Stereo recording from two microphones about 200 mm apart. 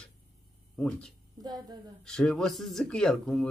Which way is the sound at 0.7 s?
5° left (ahead or behind).